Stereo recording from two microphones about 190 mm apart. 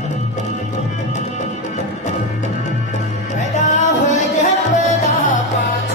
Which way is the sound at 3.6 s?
40° left (ahead or behind).